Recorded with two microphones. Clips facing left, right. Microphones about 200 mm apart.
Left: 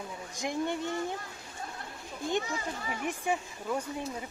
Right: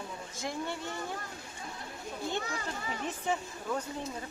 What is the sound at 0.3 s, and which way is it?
Speech, 15° left (ahead or behind).